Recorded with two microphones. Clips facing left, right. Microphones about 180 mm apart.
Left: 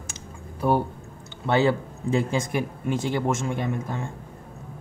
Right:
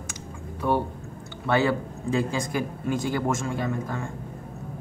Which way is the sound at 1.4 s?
25° left (ahead or behind).